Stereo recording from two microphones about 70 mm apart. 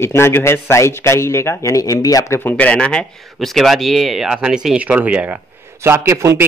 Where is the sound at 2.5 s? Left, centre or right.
Centre.